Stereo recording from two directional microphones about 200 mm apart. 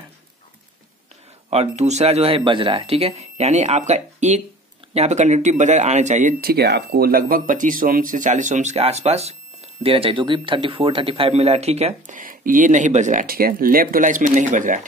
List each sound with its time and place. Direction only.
1.5 s speech: 35° right (ahead or behind)